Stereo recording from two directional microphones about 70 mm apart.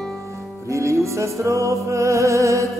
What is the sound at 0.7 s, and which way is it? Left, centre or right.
Music, right.